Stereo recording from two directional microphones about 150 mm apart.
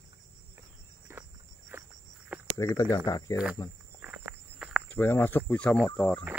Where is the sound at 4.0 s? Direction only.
10° right (ahead or behind).